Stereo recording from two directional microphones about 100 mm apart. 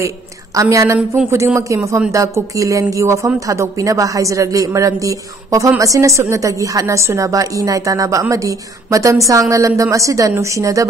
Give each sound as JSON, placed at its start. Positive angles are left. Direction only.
{"t": 0.6, "sound": "a woman's voice", "side_deg": -30}